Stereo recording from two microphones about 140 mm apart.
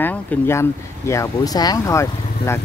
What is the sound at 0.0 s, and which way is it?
Speech, 15° left (ahead or behind).